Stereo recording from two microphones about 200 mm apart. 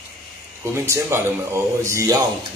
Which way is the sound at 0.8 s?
15° right (ahead or behind).